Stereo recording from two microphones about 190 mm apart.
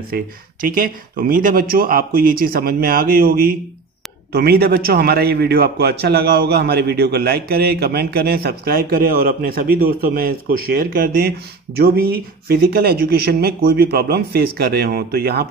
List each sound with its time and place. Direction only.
0.1 s a man's voice: 50° right (ahead or behind)
12.4 s a man's voice: 55° right (ahead or behind)